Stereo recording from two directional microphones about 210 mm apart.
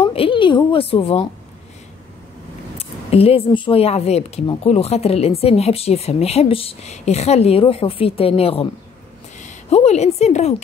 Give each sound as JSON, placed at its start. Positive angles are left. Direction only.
{"t": 0.0, "sound": "speech", "side_deg": 25}
{"t": 2.8, "sound": "a woman's voice", "side_deg": 30}